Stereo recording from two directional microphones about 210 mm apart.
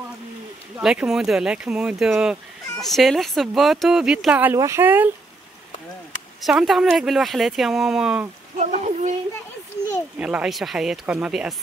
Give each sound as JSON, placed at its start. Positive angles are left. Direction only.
{"t": 0.7, "sound": "speech", "side_deg": -5}
{"t": 6.4, "sound": "speech", "side_deg": 0}
{"t": 8.5, "sound": "a sound", "side_deg": -35}
{"t": 10.1, "sound": "speech", "side_deg": -5}